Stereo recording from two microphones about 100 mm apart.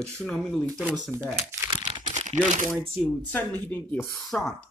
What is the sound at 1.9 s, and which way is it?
Crumpling, 70° right (ahead or behind).